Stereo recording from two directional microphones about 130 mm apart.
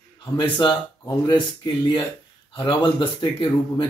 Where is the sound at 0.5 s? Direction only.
30° left (ahead or behind).